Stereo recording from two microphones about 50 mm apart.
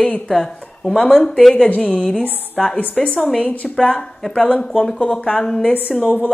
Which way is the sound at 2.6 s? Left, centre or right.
Centre.